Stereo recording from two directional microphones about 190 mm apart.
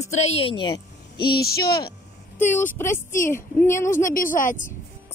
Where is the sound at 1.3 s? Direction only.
55° left (ahead or behind).